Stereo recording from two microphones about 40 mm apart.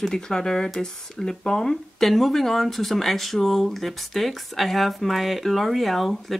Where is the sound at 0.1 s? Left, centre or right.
Centre.